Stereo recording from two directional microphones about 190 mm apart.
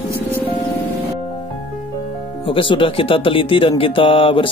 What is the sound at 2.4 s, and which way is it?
Speech, 25° left (ahead or behind).